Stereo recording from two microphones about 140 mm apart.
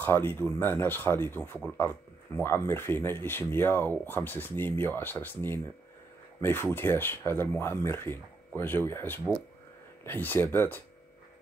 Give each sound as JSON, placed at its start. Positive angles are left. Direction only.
{"t": 0.0, "sound": "speech", "side_deg": 15}